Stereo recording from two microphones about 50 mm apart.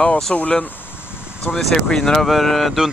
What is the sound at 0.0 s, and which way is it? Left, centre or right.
Speech, centre.